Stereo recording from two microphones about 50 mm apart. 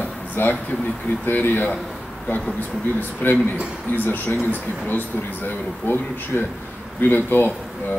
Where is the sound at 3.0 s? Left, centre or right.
Left.